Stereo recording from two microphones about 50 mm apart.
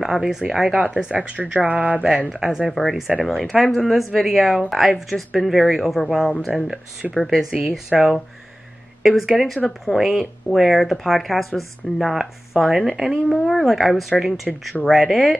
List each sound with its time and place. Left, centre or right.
0.0 s speech: centre
1.1 s speech: right
2.0 s speech: centre
2.7 s speech: centre
7.2 s speech: centre
7.5 s speech: centre
9.0 s speech: centre
13.5 s speech: centre